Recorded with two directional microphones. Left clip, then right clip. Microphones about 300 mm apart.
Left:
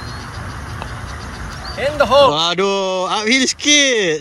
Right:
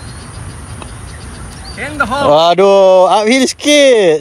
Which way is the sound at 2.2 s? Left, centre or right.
Centre.